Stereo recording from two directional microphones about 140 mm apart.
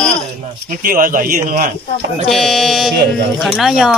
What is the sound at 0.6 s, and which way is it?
Speech, 85° right.